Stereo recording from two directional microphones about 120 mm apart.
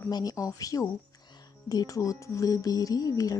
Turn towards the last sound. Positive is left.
turn(degrees=30)  # may be behind; listen again after turning